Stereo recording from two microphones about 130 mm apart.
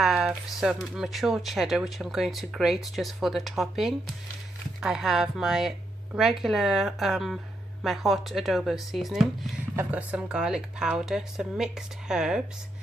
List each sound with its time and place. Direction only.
0.0 s speech: 5° right (ahead or behind)
9.8 s speech: 10° right (ahead or behind)